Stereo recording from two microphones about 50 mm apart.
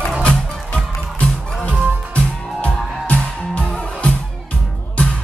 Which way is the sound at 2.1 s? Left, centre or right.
Left.